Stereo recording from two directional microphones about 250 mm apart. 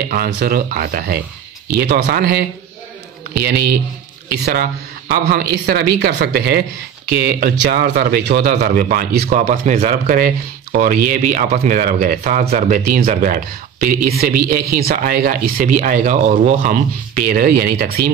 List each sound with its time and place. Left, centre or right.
0.1 s speech: right
4.3 s speech: right